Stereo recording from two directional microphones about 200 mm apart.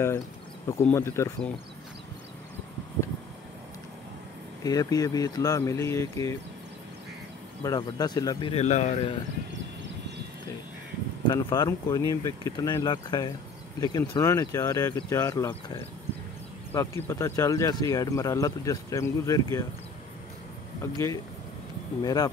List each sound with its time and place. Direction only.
0.7 s speech: 15° left (ahead or behind)
4.6 s speech: 20° left (ahead or behind)
7.6 s speech: 20° left (ahead or behind); by 9.1 s 35° left (ahead or behind)
11.2 s speech: 20° left (ahead or behind)
20.8 s speech: 15° left (ahead or behind)